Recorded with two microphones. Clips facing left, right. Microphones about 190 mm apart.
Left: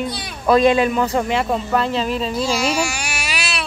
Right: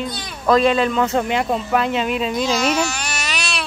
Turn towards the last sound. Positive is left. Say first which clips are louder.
# even
turn(degrees=5)  # may be behind; listen again after turning